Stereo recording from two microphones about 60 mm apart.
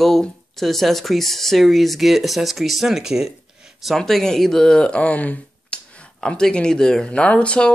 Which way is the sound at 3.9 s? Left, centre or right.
Centre.